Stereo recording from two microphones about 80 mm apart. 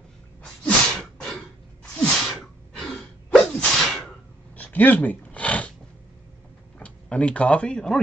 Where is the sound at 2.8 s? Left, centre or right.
Centre.